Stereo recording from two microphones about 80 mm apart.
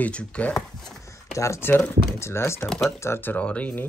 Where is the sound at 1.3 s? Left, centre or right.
Left.